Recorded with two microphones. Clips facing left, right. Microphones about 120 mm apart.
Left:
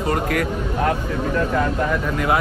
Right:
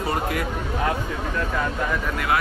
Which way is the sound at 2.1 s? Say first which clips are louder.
Left 3 dB; centre (ahead or behind).